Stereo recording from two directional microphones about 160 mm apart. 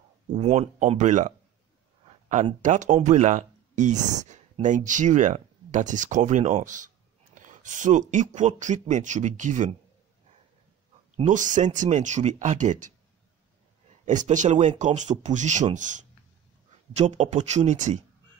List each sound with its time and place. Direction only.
0.3 s speech: 45° right (ahead or behind)
2.6 s speech: 50° right (ahead or behind)
11.2 s speech: 50° right (ahead or behind)
14.0 s speech: 50° right (ahead or behind)